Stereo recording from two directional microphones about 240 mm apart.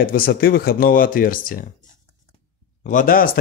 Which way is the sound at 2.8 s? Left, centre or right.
Left.